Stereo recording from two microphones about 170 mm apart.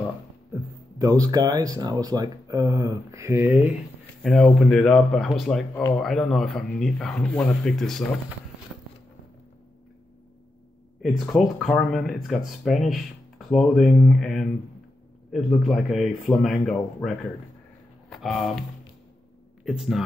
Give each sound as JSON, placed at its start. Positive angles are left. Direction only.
{"t": 0.9, "sound": "speech", "side_deg": -20}
{"t": 4.2, "sound": "speech", "side_deg": 0}
{"t": 11.0, "sound": "speech", "side_deg": 0}
{"t": 19.6, "sound": "speech", "side_deg": 0}